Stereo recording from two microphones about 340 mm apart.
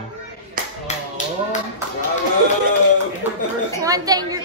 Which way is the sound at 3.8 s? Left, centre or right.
Centre.